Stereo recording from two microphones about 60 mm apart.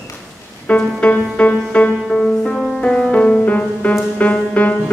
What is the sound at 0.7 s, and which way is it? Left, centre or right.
Music, left.